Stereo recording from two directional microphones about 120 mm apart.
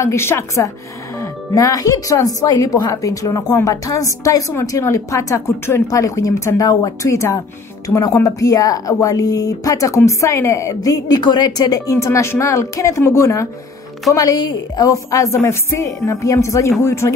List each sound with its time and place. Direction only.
0.0 s speech: 20° left (ahead or behind)